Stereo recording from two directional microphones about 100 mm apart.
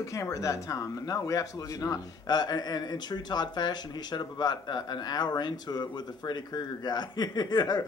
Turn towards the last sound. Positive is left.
turn(degrees=45)  # may be behind; listen again after turning